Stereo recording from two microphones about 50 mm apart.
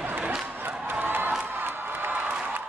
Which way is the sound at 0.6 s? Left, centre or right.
Right.